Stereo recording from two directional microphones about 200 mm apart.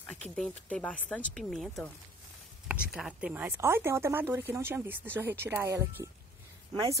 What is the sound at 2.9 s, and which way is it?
Speech, 5° right (ahead or behind).